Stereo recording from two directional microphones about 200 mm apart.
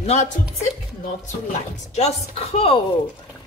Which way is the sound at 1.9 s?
30° left (ahead or behind).